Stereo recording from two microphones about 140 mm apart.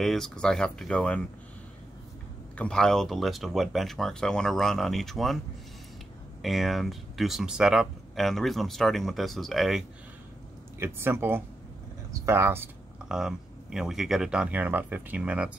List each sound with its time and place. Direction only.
0.0 s speech: centre (ahead or behind)
2.5 s speech: 5° left (ahead or behind)
6.4 s speech: centre (ahead or behind)
10.8 s speech: 15° right (ahead or behind)
13.1 s speech: 5° right (ahead or behind)